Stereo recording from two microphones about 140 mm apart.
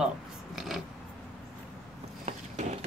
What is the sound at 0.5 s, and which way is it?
Scissors, centre (ahead or behind).